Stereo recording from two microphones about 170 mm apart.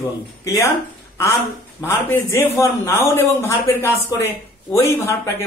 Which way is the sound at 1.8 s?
15° left (ahead or behind).